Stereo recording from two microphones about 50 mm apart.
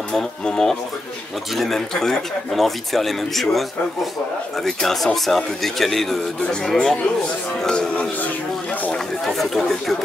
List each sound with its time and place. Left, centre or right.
0.5 s speech: centre
7.6 s speech: centre
8.9 s speech: centre